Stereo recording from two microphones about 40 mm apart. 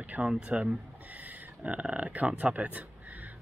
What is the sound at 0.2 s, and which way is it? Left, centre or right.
Speech, right.